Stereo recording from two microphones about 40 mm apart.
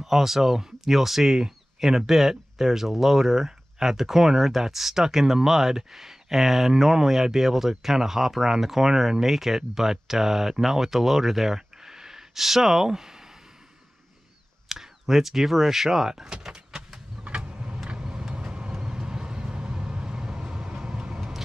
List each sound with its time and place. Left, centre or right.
0.0 s speech: centre
14.7 s speech: centre
17.5 s vehicle: right